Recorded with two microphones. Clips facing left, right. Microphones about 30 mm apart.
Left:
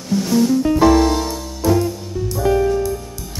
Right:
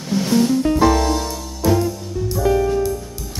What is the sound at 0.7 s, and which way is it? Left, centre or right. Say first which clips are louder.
Music: left 3 dB; centre.